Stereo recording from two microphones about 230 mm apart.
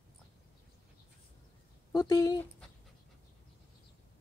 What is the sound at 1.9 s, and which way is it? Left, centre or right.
Speech, centre.